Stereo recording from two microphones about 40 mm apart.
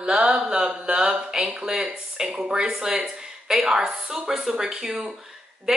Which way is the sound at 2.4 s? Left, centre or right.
Centre.